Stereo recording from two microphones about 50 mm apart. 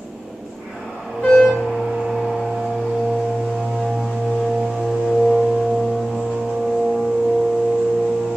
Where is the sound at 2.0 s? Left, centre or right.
Centre.